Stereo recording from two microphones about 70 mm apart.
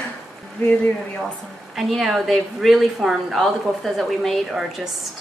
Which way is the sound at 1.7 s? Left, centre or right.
Centre.